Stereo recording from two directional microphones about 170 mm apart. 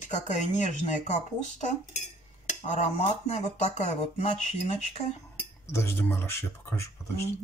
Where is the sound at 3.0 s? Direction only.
40° left (ahead or behind).